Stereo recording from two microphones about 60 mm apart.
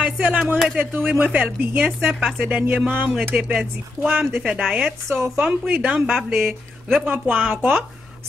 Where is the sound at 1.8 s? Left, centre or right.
Centre.